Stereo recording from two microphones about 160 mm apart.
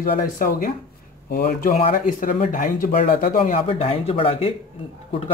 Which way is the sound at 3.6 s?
40° left (ahead or behind).